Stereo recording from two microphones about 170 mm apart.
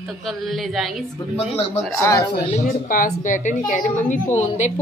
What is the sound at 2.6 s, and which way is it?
A woman's voice, 55° left (ahead or behind).